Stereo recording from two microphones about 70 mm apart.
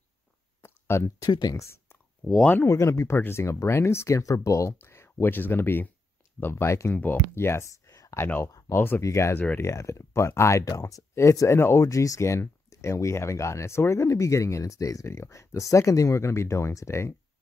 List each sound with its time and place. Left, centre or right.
0.6 s a sound: left
1.2 s speech: left
2.2 s speech: centre
2.6 s speech: left
6.9 s speech: left
8.7 s speech: left
9.0 s speech: left